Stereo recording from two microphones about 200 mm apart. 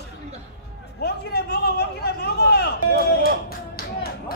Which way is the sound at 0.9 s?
55° left (ahead or behind).